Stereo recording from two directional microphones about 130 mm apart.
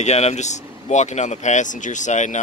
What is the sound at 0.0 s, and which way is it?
Speech, 60° left (ahead or behind).